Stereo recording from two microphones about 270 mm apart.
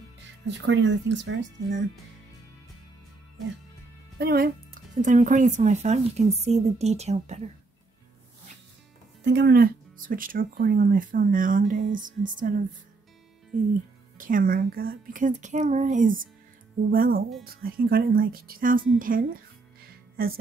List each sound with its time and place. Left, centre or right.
0.5 s speech: right
4.2 s a woman's voice: right
9.2 s speech: right
14.1 s a woman's voice: right